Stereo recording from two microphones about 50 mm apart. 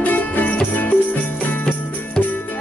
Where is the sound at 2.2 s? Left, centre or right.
Centre.